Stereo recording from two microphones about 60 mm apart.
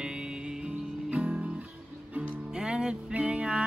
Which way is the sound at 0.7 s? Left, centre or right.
Right.